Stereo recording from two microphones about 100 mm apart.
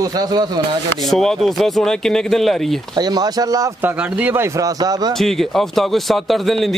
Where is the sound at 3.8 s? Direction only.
15° right (ahead or behind); by 5.1 s 40° right (ahead or behind).